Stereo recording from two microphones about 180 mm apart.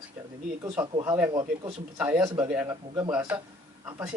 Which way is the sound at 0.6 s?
15° right (ahead or behind).